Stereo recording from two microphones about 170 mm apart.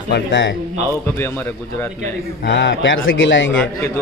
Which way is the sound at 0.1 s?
90° left.